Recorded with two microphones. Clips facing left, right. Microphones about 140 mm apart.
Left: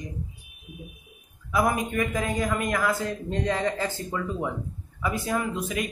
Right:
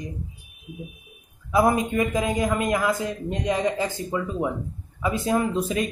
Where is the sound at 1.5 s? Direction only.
25° right (ahead or behind).